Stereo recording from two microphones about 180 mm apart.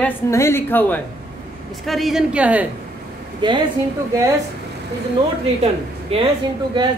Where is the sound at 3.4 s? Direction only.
25° right (ahead or behind).